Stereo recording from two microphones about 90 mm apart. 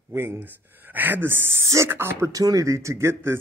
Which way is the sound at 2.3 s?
40° right (ahead or behind).